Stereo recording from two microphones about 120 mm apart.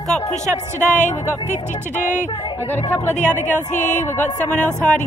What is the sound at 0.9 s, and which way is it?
Speech, 90° left.